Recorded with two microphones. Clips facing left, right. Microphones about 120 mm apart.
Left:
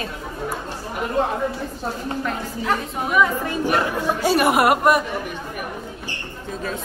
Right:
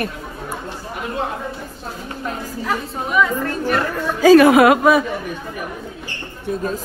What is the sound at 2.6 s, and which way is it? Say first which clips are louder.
Speech: left 1 dB; centre (ahead or behind).